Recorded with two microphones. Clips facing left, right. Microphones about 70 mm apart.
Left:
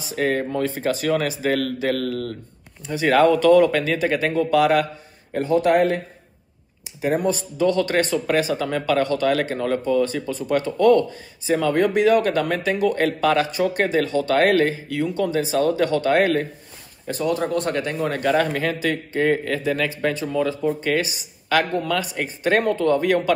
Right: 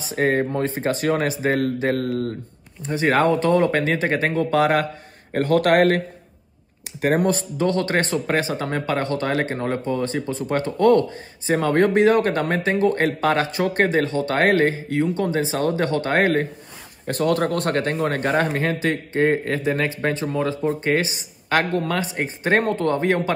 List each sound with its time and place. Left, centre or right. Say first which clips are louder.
0.0 s speech: right 2 dB; right
5.3 s speech: right 1 dB; right
7.0 s speech: right 2 dB; right
17.0 s speech: right 2 dB; right